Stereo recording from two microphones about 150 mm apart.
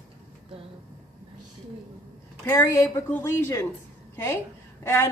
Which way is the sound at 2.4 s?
15° left (ahead or behind).